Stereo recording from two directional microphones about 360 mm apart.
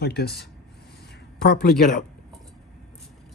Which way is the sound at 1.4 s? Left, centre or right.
Left.